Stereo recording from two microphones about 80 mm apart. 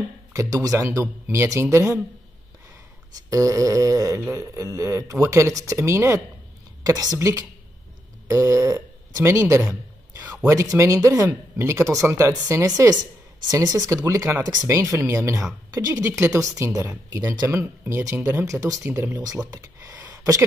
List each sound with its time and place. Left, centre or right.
0.3 s speech: right
3.3 s speech: right
6.8 s a woman's voice: right
7.2 s speech: right
13.5 s speech: right
14.0 s speech: right
15.7 s speech: right
16.0 s speech: right
17.1 s speech: right
17.5 s speech: right
18.9 s speech: right
20.1 s a sound: right